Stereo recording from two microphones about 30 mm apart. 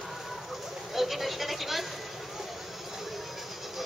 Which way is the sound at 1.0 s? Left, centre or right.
Centre.